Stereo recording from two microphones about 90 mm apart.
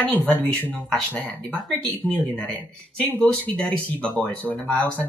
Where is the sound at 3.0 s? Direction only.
10° left (ahead or behind).